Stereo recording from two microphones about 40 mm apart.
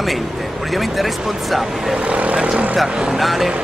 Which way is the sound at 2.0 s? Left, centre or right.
Right.